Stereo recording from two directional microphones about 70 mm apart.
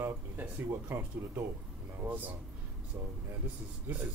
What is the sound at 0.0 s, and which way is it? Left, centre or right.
Speech, right.